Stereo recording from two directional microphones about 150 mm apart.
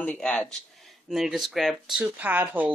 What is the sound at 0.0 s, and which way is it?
Speech, 10° left (ahead or behind).